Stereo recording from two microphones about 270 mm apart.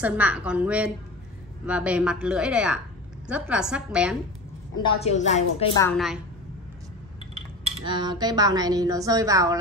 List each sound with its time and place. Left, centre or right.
0.0 s a woman's voice: centre
4.8 s a woman's voice: left
5.9 s a woman's voice: centre
7.6 s speech: centre